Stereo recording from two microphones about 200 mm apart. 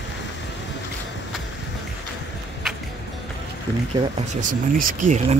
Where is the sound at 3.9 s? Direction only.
35° right (ahead or behind).